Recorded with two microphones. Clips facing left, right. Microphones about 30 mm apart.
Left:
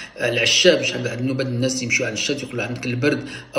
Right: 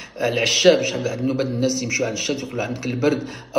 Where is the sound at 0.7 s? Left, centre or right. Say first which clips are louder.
Even; left.